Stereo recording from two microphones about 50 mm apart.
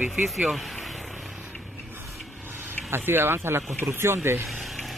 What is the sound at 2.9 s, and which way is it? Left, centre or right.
Speech, right.